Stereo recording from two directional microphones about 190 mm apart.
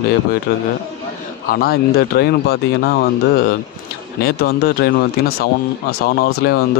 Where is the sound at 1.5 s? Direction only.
55° left (ahead or behind).